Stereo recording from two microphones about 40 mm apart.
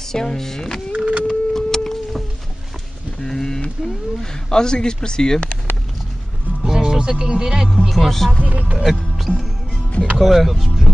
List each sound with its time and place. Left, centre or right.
0.1 s a sound: centre
0.9 s printer: right
1.2 s printer: centre
3.2 s a sound: centre
3.8 s cat: centre
6.6 s music: centre
7.9 s speech: centre
8.5 s music: right
8.8 s music: centre
10.1 s speech: centre